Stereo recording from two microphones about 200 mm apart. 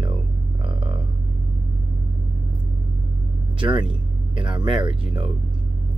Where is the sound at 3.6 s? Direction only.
25° right (ahead or behind).